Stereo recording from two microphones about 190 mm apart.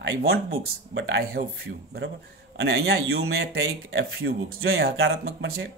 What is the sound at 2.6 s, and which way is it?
Speech, 60° right (ahead or behind).